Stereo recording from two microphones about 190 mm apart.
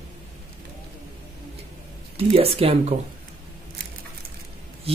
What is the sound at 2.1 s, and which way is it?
Speech, 30° right (ahead or behind).